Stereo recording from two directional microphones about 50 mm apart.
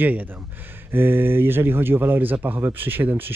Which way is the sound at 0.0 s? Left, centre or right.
Right.